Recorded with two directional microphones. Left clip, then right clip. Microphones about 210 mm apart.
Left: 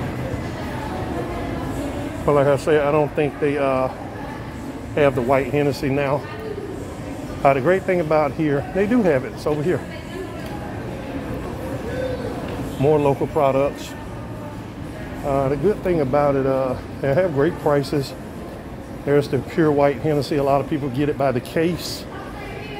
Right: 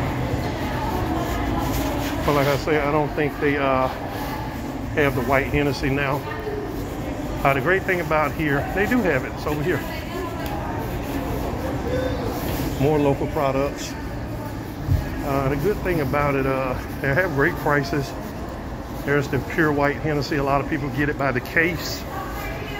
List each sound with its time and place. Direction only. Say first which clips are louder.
2.2 s speech: left 4 dB; 45° left (ahead or behind)
4.9 s speech: left 3 dB; 50° left (ahead or behind)
7.4 s speech: left 3 dB; 50° left (ahead or behind)
12.8 s speech: left 3 dB; 45° left (ahead or behind)
15.2 s speech: left 3 dB; 40° left (ahead or behind)
19.0 s speech: left 3 dB; 50° left (ahead or behind)